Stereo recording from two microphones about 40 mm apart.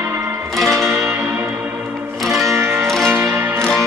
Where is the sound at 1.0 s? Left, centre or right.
Right.